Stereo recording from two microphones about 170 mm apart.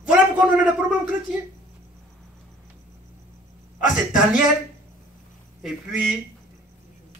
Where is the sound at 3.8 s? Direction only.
50° left (ahead or behind).